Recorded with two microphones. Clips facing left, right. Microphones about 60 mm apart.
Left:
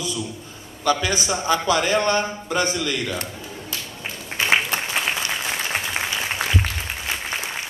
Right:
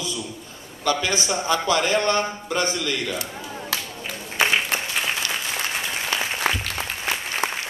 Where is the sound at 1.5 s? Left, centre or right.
Left.